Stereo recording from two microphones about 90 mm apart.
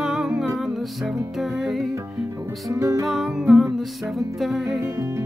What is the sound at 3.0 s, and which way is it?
Music, centre (ahead or behind).